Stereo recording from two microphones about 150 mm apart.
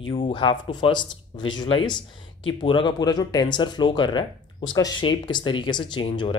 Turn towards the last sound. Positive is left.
turn(degrees=35)  # may be behind; listen again after turning